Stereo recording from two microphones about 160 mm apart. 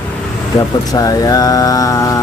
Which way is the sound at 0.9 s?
20° left (ahead or behind).